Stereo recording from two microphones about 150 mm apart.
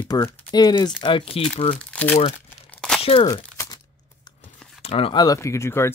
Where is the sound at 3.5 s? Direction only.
20° left (ahead or behind).